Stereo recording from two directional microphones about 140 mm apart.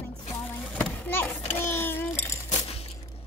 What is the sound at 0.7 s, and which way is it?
Children playing, 10° left (ahead or behind).